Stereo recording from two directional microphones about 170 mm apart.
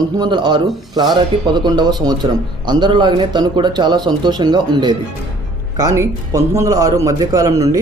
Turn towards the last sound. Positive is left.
turn(degrees=-20)  # may be behind; listen again after turning